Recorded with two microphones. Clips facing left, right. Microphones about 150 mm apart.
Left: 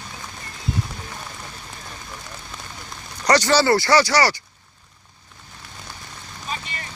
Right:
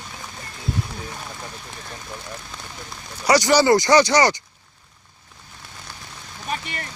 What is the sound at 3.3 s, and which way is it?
Speech, 10° right (ahead or behind).